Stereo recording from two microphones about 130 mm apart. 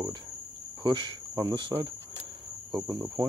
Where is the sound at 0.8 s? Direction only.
40° right (ahead or behind).